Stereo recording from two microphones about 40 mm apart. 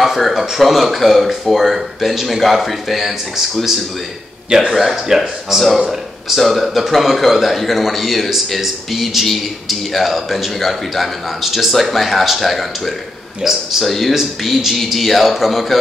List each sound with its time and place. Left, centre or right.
0.0 s a man's voice: centre
4.5 s a man's voice: centre
13.4 s speech: centre
13.8 s a man's voice: centre